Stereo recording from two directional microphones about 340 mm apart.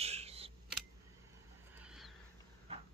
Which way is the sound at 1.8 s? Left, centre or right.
Centre.